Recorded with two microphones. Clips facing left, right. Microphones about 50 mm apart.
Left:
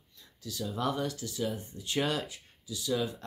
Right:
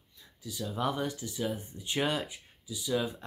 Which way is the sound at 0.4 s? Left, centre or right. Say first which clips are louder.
Even; centre.